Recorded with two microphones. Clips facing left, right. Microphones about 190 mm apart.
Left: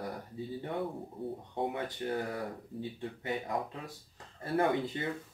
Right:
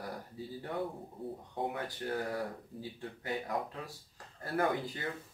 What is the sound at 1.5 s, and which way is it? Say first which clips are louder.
Speech: left 2 dB; 25° left (ahead or behind).